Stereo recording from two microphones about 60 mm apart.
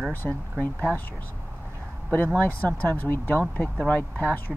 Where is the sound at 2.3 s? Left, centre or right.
Left.